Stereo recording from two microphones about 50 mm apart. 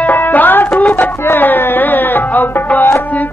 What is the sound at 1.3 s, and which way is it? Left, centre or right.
Music, left.